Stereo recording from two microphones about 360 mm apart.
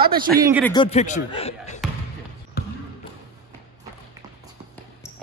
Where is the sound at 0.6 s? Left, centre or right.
Centre.